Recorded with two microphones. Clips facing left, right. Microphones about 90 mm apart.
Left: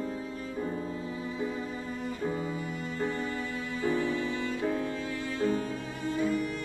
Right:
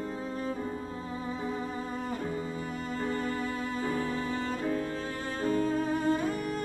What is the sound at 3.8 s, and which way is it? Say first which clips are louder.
Cello: left 5 dB; 40° right (ahead or behind).